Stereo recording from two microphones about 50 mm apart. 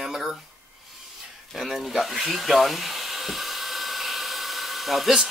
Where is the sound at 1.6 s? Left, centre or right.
Centre.